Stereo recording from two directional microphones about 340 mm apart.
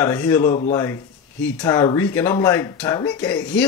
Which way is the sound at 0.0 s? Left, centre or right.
Centre.